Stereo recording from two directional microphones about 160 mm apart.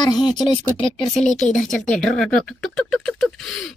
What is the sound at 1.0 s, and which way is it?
Speech, centre (ahead or behind).